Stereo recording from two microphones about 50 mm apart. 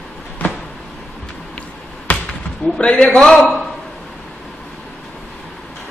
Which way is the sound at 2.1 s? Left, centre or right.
Left.